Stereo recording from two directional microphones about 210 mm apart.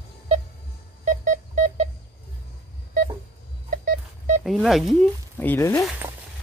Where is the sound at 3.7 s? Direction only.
35° right (ahead or behind).